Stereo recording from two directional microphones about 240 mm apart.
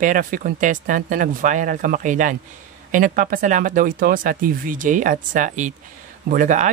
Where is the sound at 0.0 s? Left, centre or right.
Right.